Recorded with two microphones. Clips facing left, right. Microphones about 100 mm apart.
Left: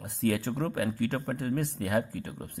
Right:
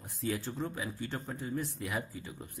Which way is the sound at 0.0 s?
75° left (ahead or behind).